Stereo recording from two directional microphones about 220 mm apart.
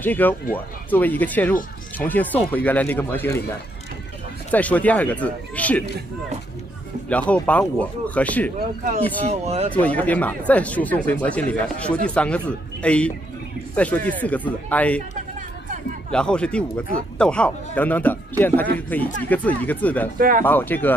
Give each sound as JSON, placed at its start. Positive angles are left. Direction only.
{"t": 0.0, "sound": "speech", "side_deg": 10}
{"t": 4.5, "sound": "speech", "side_deg": 5}
{"t": 7.1, "sound": "speech", "side_deg": 5}
{"t": 8.8, "sound": "speech", "side_deg": -30}
{"t": 9.7, "sound": "speech", "side_deg": 5}
{"t": 16.1, "sound": "speech", "side_deg": 5}
{"t": 20.2, "sound": "speech", "side_deg": -40}
{"t": 20.4, "sound": "speech", "side_deg": 10}